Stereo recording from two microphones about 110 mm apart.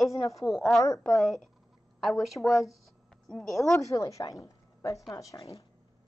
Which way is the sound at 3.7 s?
25° left (ahead or behind).